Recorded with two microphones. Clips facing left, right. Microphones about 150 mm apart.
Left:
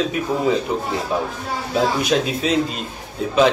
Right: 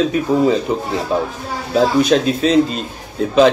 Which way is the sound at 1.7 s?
5° left (ahead or behind).